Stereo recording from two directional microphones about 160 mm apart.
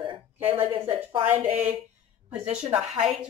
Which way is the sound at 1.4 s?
10° right (ahead or behind).